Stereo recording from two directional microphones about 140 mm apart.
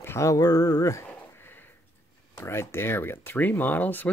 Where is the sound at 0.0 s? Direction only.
20° left (ahead or behind).